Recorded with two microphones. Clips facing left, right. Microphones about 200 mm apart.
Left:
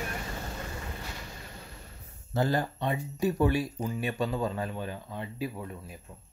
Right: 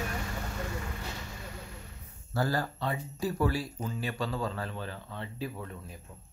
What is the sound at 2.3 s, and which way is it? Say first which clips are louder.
Speech: left 3 dB; 20° left (ahead or behind).